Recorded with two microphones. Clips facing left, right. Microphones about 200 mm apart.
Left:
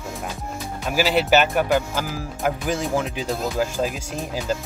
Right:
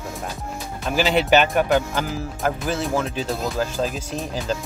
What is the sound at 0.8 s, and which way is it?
Speech, 5° left (ahead or behind).